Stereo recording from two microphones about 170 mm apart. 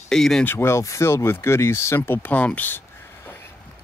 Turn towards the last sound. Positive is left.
turn(degrees=10)  # may be behind; listen again after turning